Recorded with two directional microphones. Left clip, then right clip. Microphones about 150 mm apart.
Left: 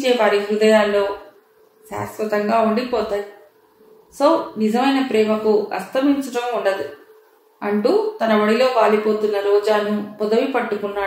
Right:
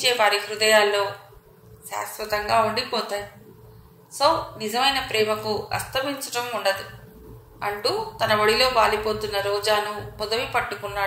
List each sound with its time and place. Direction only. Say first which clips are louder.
0.0 s a woman's voice: left 4 dB; 45° right (ahead or behind)
4.2 s a woman's voice: left 4 dB; 45° right (ahead or behind)